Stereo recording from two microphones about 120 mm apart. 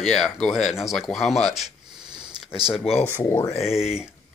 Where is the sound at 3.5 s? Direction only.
5° right (ahead or behind).